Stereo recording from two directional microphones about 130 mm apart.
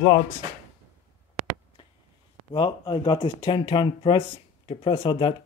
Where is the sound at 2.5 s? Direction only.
40° left (ahead or behind).